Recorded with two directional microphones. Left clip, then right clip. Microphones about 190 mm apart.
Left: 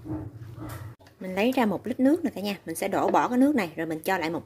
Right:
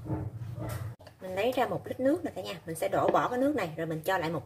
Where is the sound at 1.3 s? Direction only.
50° left (ahead or behind).